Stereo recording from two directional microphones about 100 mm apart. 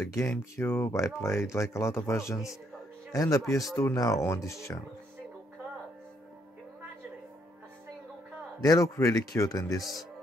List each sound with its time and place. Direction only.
0.1 s speech: 25° left (ahead or behind)
8.6 s speech: 30° left (ahead or behind)
9.8 s speech: centre (ahead or behind)